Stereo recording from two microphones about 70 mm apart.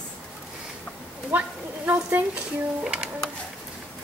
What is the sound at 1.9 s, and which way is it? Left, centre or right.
Speech, right.